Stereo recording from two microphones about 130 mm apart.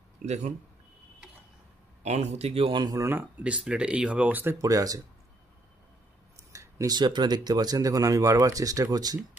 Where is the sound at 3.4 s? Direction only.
10° right (ahead or behind); by 4.9 s 25° right (ahead or behind).